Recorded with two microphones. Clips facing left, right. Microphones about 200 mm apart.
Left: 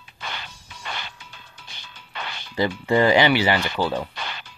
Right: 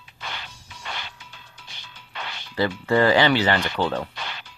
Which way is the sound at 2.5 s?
15° left (ahead or behind).